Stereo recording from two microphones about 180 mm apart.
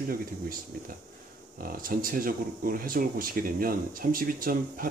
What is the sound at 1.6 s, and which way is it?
Speech, 50° right (ahead or behind).